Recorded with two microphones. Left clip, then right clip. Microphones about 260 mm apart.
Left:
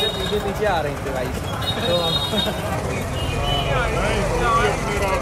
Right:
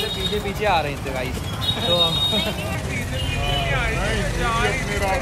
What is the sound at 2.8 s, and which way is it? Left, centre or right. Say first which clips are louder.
Speech: left 2 dB; left.